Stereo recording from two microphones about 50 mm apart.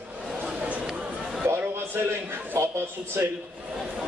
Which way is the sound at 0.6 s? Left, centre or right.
Right.